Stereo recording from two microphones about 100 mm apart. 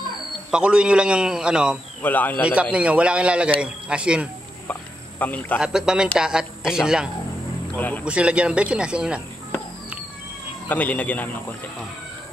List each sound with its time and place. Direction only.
0.5 s a man's voice: 10° right (ahead or behind)
2.0 s speech: 15° left (ahead or behind)
2.7 s a man's voice: 15° right (ahead or behind)
5.2 s speech: 15° left (ahead or behind)
5.6 s a man's voice: 5° right (ahead or behind)
7.7 s speech: 15° left (ahead or behind)
8.0 s a man's voice: 10° right (ahead or behind)
10.7 s speech: 15° left (ahead or behind)